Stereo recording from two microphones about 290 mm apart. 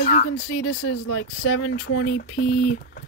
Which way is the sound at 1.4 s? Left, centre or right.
Left.